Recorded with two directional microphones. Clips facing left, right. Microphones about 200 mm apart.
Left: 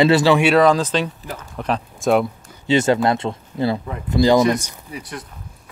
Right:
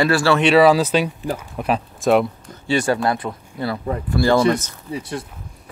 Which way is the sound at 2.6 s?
20° left (ahead or behind).